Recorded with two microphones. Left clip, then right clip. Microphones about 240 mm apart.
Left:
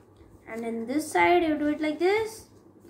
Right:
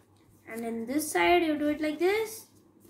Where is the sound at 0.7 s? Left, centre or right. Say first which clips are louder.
Left 2 dB; centre.